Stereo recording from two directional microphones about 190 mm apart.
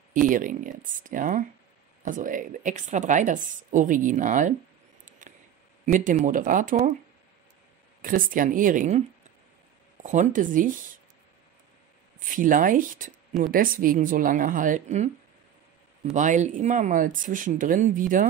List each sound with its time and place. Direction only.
0.1 s a woman's voice: 45° right (ahead or behind)
5.2 s a sound: 40° right (ahead or behind)
5.9 s a woman's voice: 40° right (ahead or behind)
8.0 s a woman's voice: 45° right (ahead or behind)
10.0 s a woman's voice: 40° right (ahead or behind)
12.3 s a woman's voice: 45° right (ahead or behind)